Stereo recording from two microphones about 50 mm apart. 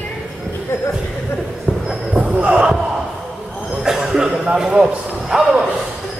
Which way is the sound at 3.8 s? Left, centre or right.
Centre.